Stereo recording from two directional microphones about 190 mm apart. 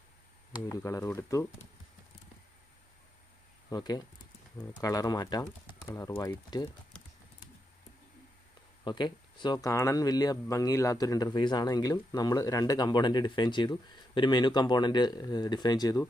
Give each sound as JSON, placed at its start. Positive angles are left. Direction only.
{"t": 0.6, "sound": "speech", "side_deg": 15}
{"t": 3.7, "sound": "speech", "side_deg": 20}
{"t": 8.8, "sound": "speech", "side_deg": 25}